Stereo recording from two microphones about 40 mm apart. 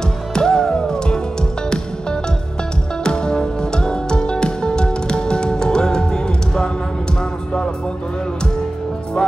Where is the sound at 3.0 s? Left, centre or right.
Centre.